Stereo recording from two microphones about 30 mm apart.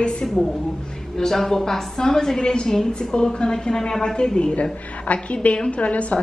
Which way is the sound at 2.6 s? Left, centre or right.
Centre.